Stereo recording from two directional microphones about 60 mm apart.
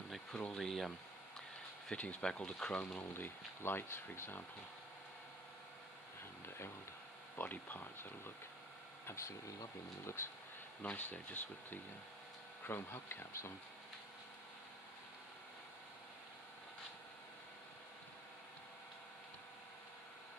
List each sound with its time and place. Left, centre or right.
0.4 s speech: centre
1.9 s speech: left
3.0 s speech: left
7.3 s speech: left
9.0 s speech: left
10.8 s speech: left
12.6 s speech: left